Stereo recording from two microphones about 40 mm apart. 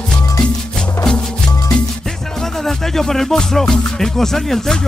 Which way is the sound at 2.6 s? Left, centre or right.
Centre.